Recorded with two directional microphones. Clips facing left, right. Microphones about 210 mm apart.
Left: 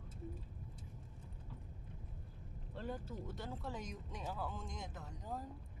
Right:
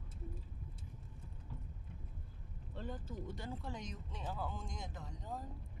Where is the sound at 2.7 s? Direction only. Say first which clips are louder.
Left 1 dB; 10° left (ahead or behind).